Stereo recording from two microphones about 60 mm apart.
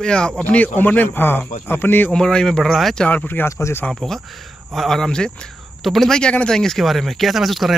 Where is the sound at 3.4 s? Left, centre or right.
Left.